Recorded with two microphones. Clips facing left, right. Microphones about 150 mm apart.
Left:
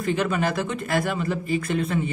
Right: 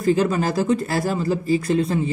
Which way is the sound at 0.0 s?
35° right (ahead or behind).